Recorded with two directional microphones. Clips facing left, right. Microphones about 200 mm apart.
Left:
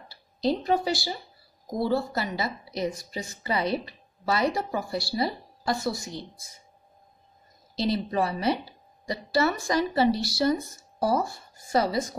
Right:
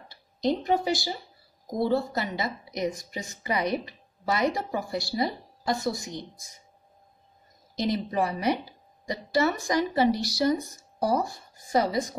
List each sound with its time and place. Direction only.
0.1 s a woman's voice: 20° right (ahead or behind)
7.7 s speech: 15° right (ahead or behind)